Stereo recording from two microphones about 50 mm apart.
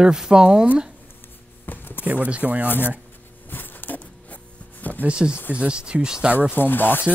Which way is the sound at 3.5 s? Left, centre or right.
Left.